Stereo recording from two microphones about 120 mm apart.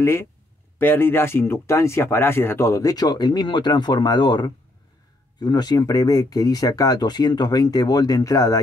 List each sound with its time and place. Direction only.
0.0 s speech: 20° left (ahead or behind)